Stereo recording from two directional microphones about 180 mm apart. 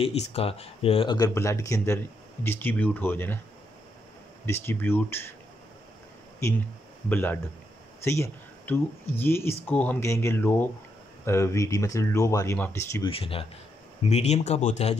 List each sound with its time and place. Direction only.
0.0 s speech: 35° left (ahead or behind); by 3.3 s 10° left (ahead or behind)
4.5 s speech: 10° left (ahead or behind)
7.1 s speech: 10° left (ahead or behind)
13.1 s speech: 30° left (ahead or behind)